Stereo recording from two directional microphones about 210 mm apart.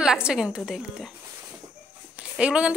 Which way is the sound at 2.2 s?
5° right (ahead or behind).